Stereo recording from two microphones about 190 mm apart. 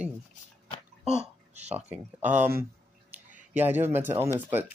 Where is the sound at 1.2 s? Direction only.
35° right (ahead or behind).